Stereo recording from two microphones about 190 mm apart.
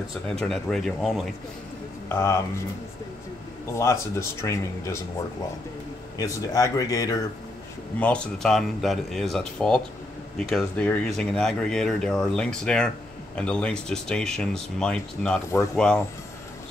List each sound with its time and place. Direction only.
0.4 s speech: 5° left (ahead or behind)
2.0 s speech: 15° left (ahead or behind)
3.7 s speech: 15° left (ahead or behind)
6.1 s speech: 15° left (ahead or behind)
8.0 s speech: 5° left (ahead or behind)